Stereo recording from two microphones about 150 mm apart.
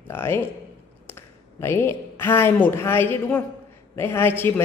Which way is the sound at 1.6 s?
15° left (ahead or behind).